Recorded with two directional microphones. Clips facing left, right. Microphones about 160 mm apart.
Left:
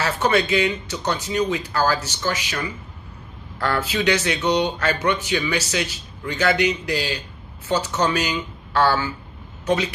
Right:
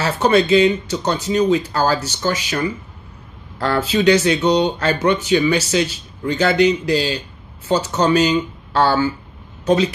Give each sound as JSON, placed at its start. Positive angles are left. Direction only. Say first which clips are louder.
{"t": 0.0, "sound": "speech", "louder": "right 5 dB", "side_deg": -30}